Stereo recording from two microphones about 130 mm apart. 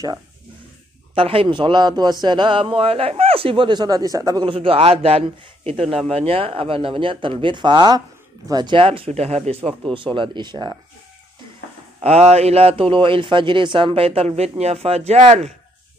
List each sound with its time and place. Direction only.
1.1 s a man's voice: 45° right (ahead or behind); by 4.5 s 30° right (ahead or behind)
4.5 s speech: 45° right (ahead or behind)
9.9 s a man's voice: 40° right (ahead or behind)
12.0 s speech: 55° right (ahead or behind)